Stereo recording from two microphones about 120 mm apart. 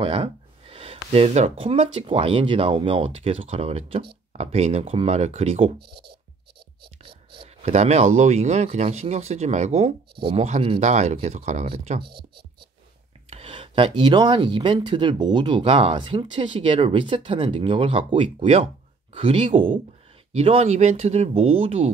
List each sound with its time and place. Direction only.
0.0 s a sound: 50° right (ahead or behind)
1.1 s speech: 65° right (ahead or behind)
7.0 s whispering: 50° right (ahead or behind)
7.7 s speech: 70° right (ahead or behind)
8.6 s speech: 65° right (ahead or behind)
10.8 s speech: 75° right (ahead or behind)
13.3 s speech: 50° right (ahead or behind)
20.3 s speech: 60° right (ahead or behind)